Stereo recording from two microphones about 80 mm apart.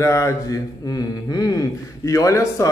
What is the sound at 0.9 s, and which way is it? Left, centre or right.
Speech, left.